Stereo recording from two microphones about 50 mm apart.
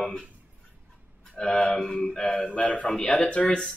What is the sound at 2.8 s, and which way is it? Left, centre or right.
Speech, centre.